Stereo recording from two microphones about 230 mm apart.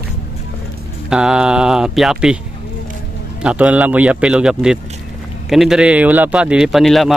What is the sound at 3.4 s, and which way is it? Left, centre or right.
A man's voice, centre.